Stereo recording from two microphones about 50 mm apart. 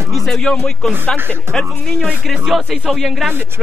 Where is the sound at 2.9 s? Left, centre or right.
Centre.